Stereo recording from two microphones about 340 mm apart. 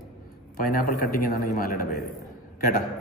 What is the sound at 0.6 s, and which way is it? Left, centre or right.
A man's voice, left.